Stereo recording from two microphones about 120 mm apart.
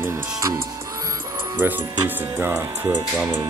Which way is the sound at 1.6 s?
15° right (ahead or behind).